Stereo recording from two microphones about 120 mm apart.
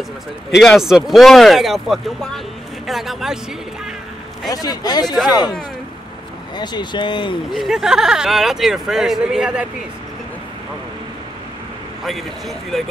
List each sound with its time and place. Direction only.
0.6 s speech: centre (ahead or behind)
4.5 s speech: 30° left (ahead or behind)
5.1 s speech: centre (ahead or behind)
6.5 s speech: 35° left (ahead or behind)
7.5 s speech: centre (ahead or behind)
12.0 s speech: centre (ahead or behind)